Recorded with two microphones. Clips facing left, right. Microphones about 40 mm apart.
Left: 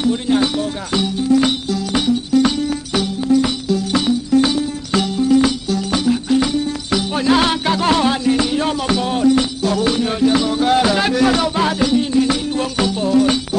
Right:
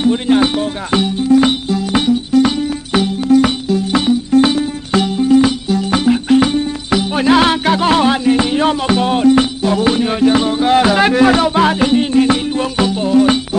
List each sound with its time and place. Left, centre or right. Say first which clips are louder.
0.0 s music: right 4 dB; right
3.3 s music: right 4 dB; right
6.9 s music: right 4 dB; right
9.7 s music: right 3 dB; right
12.5 s music: right 3 dB; centre